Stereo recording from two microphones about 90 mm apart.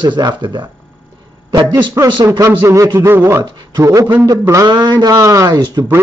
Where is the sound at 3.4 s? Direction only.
50° right (ahead or behind).